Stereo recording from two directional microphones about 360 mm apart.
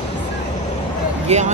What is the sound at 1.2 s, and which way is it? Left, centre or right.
Speech, centre.